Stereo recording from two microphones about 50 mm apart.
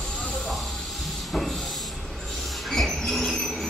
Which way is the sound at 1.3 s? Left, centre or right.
Centre.